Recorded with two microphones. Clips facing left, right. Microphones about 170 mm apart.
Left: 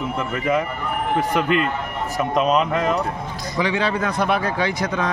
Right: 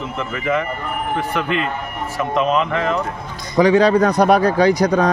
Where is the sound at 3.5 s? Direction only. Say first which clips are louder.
Right 10 dB; 40° right (ahead or behind).